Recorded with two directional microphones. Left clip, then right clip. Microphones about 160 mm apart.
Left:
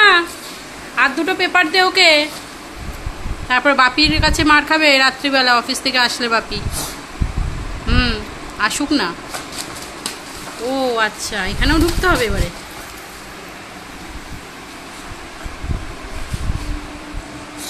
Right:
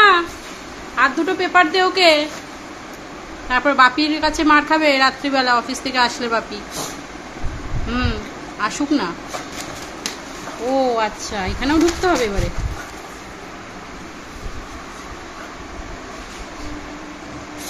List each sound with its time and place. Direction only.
0.9 s a woman's voice: 5° left (ahead or behind)
3.4 s a woman's voice: 15° left (ahead or behind)
7.9 s a sound: 10° left (ahead or behind)
10.8 s a woman's voice: centre (ahead or behind)